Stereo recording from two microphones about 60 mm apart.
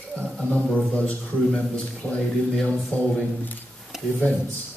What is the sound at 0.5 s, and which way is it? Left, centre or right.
A man's voice, left.